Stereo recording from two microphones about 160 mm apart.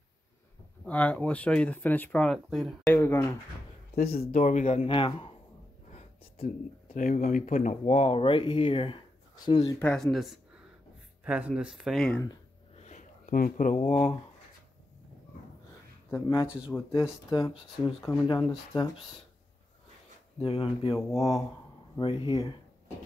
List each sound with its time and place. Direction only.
0.8 s speech: 10° left (ahead or behind)
2.9 s speech: 15° left (ahead or behind)
3.9 s speech: 70° left (ahead or behind); by 4.8 s 50° left (ahead or behind)
4.8 s speech: 35° left (ahead or behind)
5.9 s a sound: 40° left (ahead or behind)
7.0 s speech: 50° left (ahead or behind); by 9.8 s 25° left (ahead or behind)
9.8 s speech: 10° left (ahead or behind)
12.7 s a sound: 45° left (ahead or behind)
13.8 s speech: 45° left (ahead or behind)
16.1 s speech: 20° left (ahead or behind)
16.7 s speech: 10° left (ahead or behind)
17.3 s speech: 20° left (ahead or behind)
20.4 s speech: 35° left (ahead or behind)